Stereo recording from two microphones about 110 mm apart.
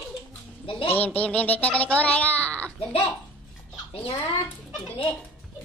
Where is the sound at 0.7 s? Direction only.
55° left (ahead or behind).